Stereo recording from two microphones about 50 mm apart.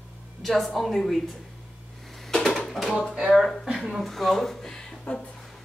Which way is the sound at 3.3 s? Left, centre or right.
Centre.